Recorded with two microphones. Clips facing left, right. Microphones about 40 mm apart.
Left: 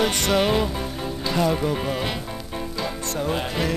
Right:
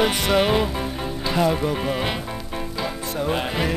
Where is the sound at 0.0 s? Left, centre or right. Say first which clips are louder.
Right 1 dB; centre.